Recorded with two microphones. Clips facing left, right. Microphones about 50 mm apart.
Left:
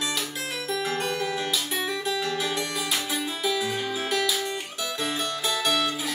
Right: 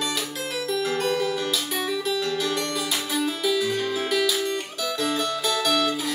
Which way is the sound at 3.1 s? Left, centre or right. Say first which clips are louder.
Right 6 dB; centre.